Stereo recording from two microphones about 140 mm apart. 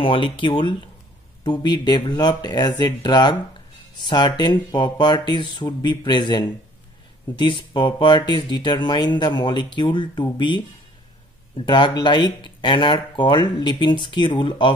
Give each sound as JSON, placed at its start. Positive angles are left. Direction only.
{"t": 0.0, "sound": "speech", "side_deg": 40}